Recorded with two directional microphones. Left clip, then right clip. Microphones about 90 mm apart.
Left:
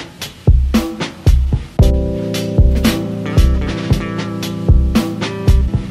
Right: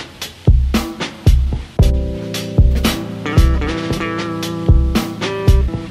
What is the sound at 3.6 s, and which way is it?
Music, 20° right (ahead or behind).